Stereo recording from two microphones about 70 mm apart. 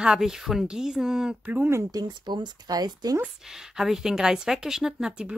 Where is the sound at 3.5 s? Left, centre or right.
Centre.